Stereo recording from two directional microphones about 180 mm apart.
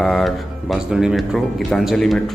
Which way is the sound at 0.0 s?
Centre (ahead or behind).